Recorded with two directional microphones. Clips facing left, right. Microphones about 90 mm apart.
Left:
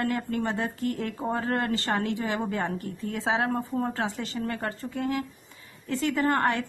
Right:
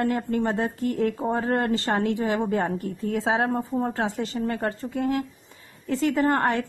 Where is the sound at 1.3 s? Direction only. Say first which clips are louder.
Right 3 dB; 30° right (ahead or behind).